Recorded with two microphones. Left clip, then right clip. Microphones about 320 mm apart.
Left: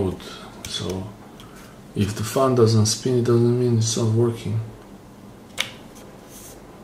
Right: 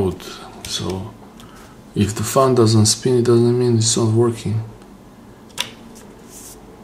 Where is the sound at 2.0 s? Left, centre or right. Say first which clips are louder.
Right 5 dB; right.